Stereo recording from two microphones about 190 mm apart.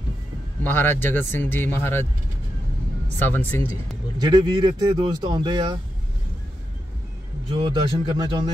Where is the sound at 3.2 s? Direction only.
10° left (ahead or behind).